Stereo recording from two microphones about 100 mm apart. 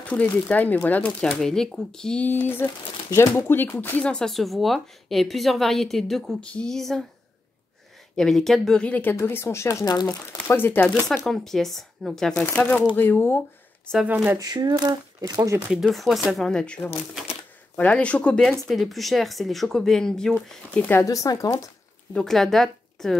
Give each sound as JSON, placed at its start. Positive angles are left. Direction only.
{"t": 0.0, "sound": "speech", "side_deg": 15}
{"t": 1.4, "sound": "speech", "side_deg": 5}
{"t": 2.2, "sound": "speech", "side_deg": 20}
{"t": 8.2, "sound": "speech", "side_deg": 5}
{"t": 8.8, "sound": "speech", "side_deg": 15}
{"t": 10.0, "sound": "speech", "side_deg": 20}
{"t": 11.2, "sound": "speech", "side_deg": 5}
{"t": 14.0, "sound": "speech", "side_deg": -15}
{"t": 14.4, "sound": "speech", "side_deg": -45}
{"t": 15.8, "sound": "speech", "side_deg": 0}
{"t": 20.9, "sound": "speech", "side_deg": 30}
{"t": 22.1, "sound": "speech", "side_deg": 5}